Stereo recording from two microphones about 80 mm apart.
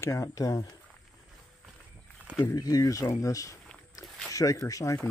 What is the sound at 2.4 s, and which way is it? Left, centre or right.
Speech, left.